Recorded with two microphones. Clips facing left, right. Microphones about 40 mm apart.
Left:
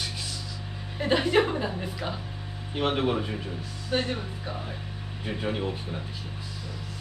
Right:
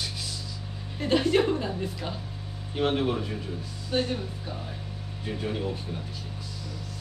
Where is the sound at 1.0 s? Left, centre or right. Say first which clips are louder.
Even; centre.